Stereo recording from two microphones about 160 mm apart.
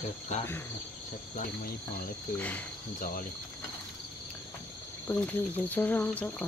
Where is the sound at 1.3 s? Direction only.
60° left (ahead or behind).